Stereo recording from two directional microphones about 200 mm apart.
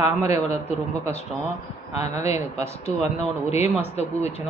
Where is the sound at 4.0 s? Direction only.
30° left (ahead or behind).